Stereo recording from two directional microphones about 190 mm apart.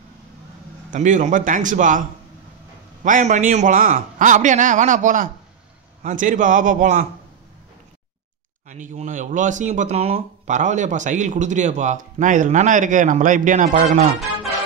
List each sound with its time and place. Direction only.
0.9 s a man's voice: 40° right (ahead or behind)
8.6 s speech: 40° right (ahead or behind)